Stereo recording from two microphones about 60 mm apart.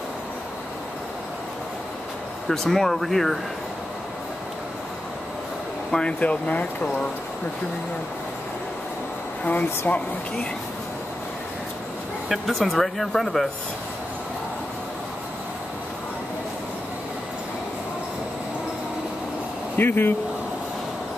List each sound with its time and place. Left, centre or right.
2.4 s speech: centre
5.9 s speech: centre
9.4 s speech: left
12.3 s speech: centre
19.8 s speech: left